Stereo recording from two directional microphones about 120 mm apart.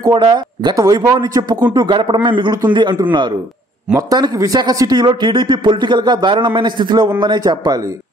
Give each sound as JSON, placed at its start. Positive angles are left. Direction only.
{"t": 0.0, "sound": "speech", "side_deg": -35}